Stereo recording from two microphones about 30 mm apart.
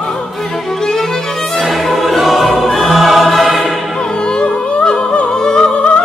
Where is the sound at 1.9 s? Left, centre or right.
Centre.